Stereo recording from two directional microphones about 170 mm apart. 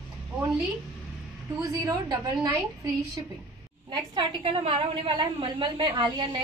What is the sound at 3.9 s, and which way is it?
A woman's voice, 30° right (ahead or behind).